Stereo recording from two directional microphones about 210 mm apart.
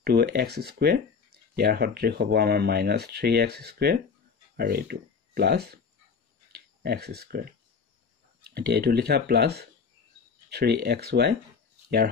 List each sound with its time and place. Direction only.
0.0 s speech: 50° right (ahead or behind)